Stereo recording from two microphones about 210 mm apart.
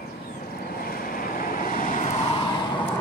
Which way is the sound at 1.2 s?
40° left (ahead or behind).